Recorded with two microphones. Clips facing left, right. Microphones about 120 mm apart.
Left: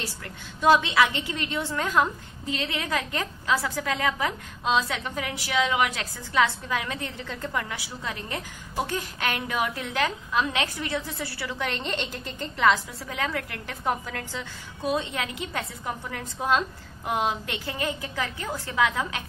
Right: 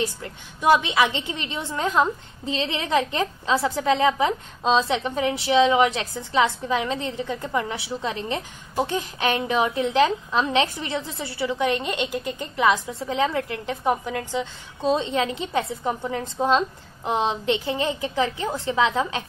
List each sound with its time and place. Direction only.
0.0 s a woman's voice: 20° right (ahead or behind)